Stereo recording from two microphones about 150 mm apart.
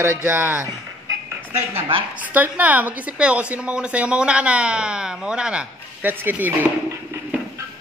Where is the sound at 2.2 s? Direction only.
10° right (ahead or behind).